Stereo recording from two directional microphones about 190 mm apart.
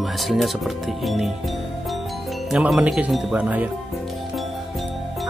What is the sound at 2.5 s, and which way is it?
Speech, 5° right (ahead or behind).